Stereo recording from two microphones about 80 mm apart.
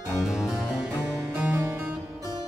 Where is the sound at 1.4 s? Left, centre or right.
Right.